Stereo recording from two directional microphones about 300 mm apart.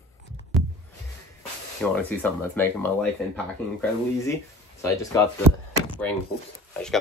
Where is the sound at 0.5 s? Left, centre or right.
Centre.